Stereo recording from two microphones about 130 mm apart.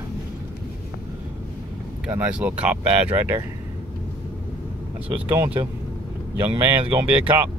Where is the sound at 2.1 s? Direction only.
10° right (ahead or behind).